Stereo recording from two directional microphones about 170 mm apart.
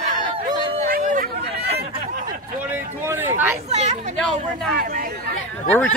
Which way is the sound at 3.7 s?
40° right (ahead or behind).